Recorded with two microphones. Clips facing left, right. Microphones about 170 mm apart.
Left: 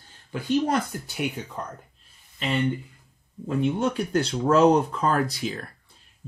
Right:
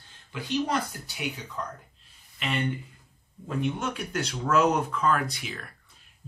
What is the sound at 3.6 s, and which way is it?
Speech, 30° left (ahead or behind).